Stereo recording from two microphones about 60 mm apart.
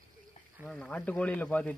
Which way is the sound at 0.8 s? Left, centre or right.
Left.